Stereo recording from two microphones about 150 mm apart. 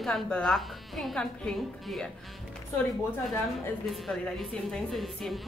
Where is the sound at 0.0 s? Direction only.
5° left (ahead or behind).